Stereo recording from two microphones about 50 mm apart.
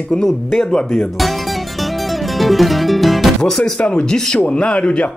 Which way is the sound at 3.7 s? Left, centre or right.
Left.